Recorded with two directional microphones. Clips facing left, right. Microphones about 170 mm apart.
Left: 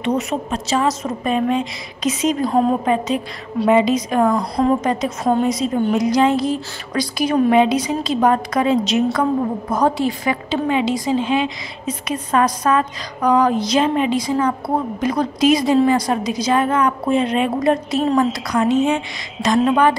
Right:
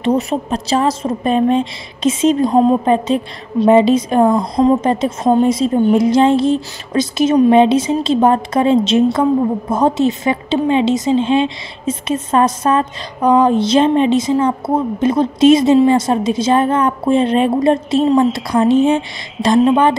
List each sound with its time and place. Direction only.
0.0 s a woman's voice: 35° right (ahead or behind)